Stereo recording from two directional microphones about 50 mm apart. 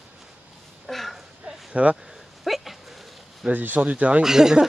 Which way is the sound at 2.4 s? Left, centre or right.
Centre.